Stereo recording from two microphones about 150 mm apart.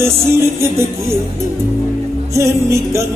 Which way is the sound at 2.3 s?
20° right (ahead or behind).